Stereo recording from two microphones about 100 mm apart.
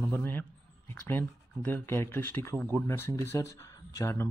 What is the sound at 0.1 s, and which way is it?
Speech, 20° left (ahead or behind).